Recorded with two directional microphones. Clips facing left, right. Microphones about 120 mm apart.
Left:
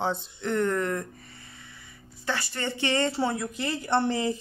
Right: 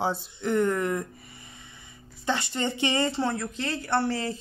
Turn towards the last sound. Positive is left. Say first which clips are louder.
# left 2 dB
turn(degrees=15)  # may be behind; listen again after turning